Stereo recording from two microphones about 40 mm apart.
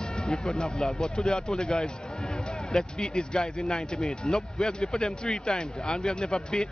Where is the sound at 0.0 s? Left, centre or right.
Left.